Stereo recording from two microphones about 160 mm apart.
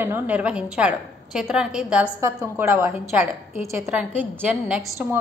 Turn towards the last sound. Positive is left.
turn(degrees=-10)  # may be behind; listen again after turning